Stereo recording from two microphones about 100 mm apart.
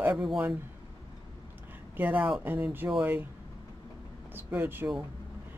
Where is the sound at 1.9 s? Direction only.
20° right (ahead or behind).